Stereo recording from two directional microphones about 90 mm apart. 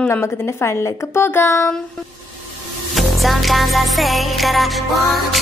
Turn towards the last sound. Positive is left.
turn(degrees=0)  # may be behind; listen again after turning